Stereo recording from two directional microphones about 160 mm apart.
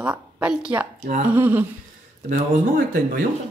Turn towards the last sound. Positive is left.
turn(degrees=-65)  # may be behind; listen again after turning